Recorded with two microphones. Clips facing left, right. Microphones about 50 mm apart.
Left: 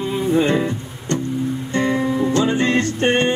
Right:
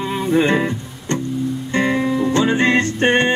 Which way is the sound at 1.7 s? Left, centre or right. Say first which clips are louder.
Right 2 dB; right.